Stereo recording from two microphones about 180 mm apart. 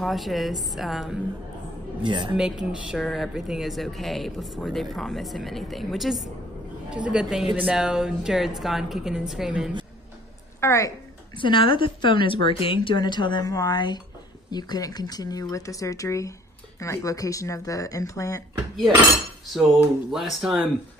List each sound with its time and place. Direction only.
0.0 s speech: centre (ahead or behind)
2.0 s speech: 25° right (ahead or behind)
2.3 s speech: 5° right (ahead or behind)
10.6 s speech: 15° left (ahead or behind)
11.3 s a woman's voice: 25° left (ahead or behind)
20.1 s speech: centre (ahead or behind)